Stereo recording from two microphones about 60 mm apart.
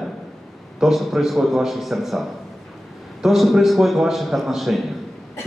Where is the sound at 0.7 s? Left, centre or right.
Centre.